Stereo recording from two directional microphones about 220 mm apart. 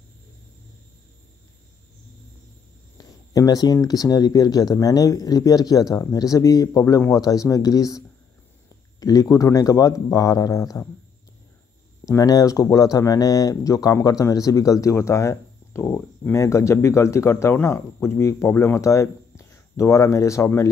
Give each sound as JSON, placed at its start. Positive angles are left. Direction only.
{"t": 3.0, "sound": "speech", "side_deg": 15}
{"t": 9.0, "sound": "speech", "side_deg": 15}
{"t": 12.1, "sound": "speech", "side_deg": 15}